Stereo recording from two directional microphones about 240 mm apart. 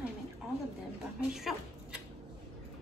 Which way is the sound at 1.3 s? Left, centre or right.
Centre.